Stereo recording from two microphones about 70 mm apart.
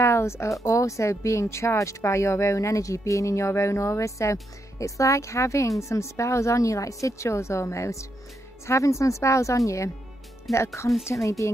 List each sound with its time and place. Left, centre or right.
0.0 s speech: left